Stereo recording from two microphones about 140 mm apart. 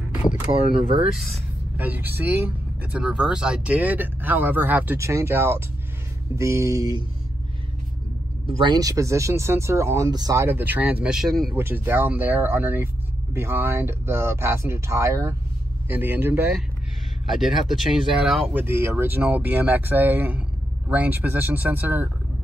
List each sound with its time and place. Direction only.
0.5 s speech: 45° right (ahead or behind)
1.8 s speech: 15° right (ahead or behind)
8.6 s speech: 25° right (ahead or behind); by 11.5 s centre (ahead or behind)
11.5 s speech: 15° right (ahead or behind)
17.3 s speech: centre (ahead or behind)
18.6 s speech: 15° right (ahead or behind)